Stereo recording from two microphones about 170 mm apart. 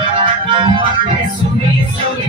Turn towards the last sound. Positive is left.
turn(degrees=-30)  # may be behind; listen again after turning